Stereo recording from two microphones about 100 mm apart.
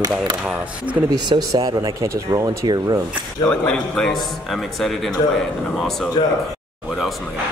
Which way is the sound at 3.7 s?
5° left (ahead or behind).